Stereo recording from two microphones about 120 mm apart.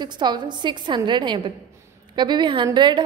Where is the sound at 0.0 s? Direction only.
40° right (ahead or behind).